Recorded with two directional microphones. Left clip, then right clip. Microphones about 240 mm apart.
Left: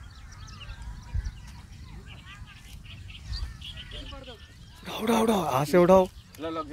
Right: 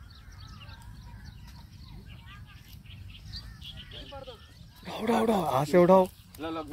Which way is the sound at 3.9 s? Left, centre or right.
Centre.